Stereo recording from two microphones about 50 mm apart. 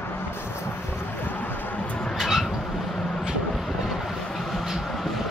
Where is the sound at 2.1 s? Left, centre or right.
Centre.